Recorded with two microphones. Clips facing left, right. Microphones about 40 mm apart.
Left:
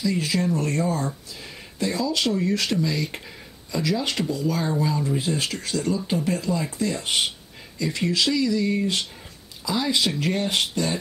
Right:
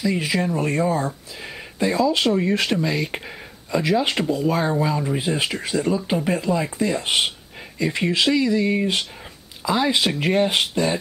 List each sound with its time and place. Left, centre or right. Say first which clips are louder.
0.0 s speech: right 2 dB; right